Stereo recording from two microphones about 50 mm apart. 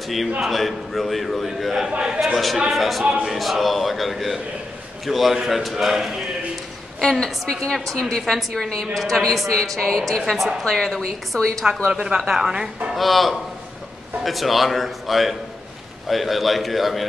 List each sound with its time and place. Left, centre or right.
0.4 s a man's voice: centre
1.9 s speech: centre
2.1 s a man's voice: centre
7.0 s a woman's voice: centre
11.9 s speech: centre
12.9 s a man's voice: centre